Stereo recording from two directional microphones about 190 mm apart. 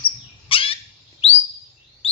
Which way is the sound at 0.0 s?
30° left (ahead or behind).